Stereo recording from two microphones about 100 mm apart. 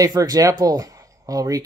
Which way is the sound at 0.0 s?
35° right (ahead or behind).